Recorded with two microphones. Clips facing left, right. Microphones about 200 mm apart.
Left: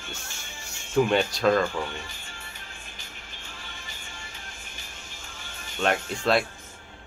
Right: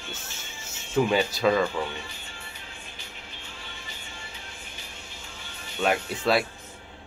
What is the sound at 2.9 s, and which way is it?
Music, 45° left (ahead or behind).